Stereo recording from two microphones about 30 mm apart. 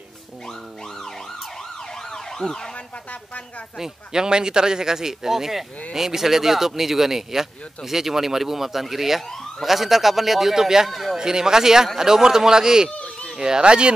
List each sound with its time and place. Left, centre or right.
2.0 s emergency vehicle: centre
3.1 s speech: left
3.7 s speech: centre
10.9 s a man's voice: centre
11.1 s speech: right